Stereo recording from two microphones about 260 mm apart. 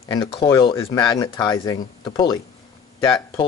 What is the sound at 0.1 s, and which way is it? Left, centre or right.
Speech, centre.